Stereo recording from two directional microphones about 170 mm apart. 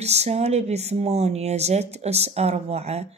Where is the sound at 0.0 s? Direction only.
40° right (ahead or behind).